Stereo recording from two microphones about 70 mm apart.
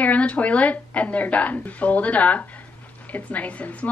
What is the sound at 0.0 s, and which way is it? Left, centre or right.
A woman's voice, centre.